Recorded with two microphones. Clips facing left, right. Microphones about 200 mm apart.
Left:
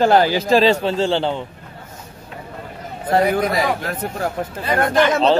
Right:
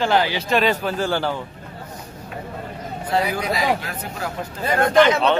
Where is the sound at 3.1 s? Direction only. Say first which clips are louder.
Left 5 dB; 55° left (ahead or behind).